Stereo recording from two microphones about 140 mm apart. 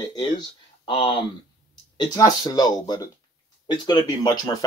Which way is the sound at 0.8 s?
35° left (ahead or behind).